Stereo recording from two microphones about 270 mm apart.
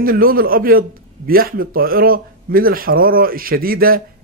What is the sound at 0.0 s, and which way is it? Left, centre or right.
A man's voice, right.